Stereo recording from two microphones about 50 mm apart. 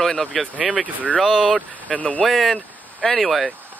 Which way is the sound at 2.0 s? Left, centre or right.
Left.